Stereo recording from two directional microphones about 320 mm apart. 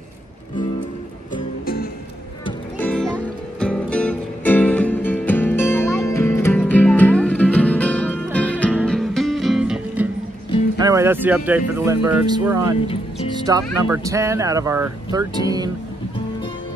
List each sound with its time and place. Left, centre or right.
1.3 s music: left
2.4 s music: centre
10.8 s speech: centre
13.3 s music: centre
13.7 s speech: centre